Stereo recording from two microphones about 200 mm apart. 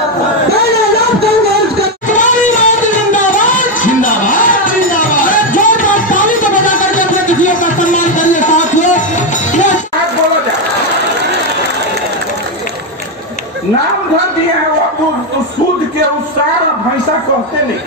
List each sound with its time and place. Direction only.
2.0 s music: 40° left (ahead or behind)